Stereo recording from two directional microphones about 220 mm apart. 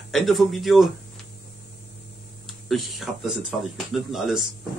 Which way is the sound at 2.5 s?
Centre (ahead or behind).